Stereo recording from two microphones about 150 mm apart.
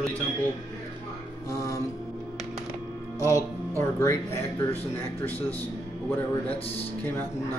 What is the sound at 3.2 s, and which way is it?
Speech, 20° left (ahead or behind).